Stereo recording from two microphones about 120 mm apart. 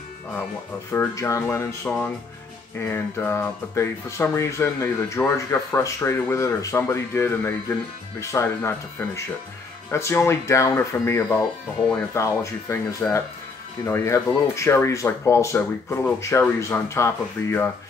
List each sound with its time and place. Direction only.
0.9 s speech: 25° left (ahead or behind)
1.9 s speech: 10° left (ahead or behind)
13.8 s speech: 25° left (ahead or behind)